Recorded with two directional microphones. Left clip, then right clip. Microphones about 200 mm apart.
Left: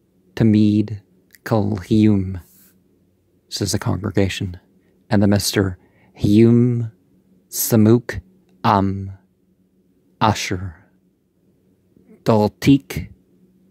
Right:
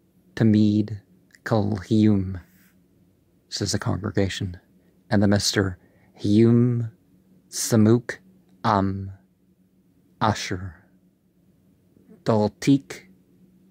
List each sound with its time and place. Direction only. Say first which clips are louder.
0.3 s speech: left 4 dB; 25° left (ahead or behind)
3.4 s speech: left 4 dB; 30° left (ahead or behind)
12.2 s speech: left 5 dB; 30° left (ahead or behind)